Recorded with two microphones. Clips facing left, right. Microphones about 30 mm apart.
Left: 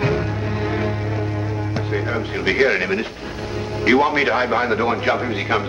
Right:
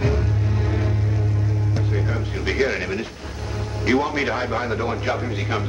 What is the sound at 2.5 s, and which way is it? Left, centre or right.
Speech, left.